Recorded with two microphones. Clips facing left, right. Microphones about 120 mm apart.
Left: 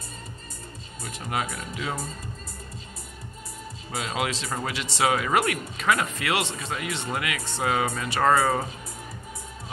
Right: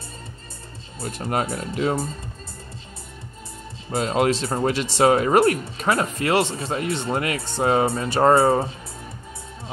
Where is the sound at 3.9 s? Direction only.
35° right (ahead or behind).